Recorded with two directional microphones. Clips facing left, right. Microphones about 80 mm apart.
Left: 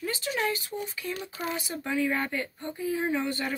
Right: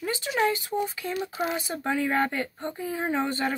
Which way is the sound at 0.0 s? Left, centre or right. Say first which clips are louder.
Right 4 dB; right.